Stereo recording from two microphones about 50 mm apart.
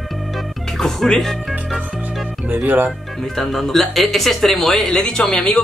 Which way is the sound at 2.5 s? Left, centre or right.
Right.